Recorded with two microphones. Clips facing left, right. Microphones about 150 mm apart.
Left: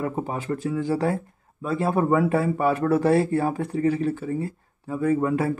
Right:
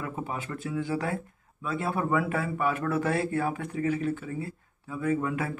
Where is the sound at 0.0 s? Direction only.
40° left (ahead or behind).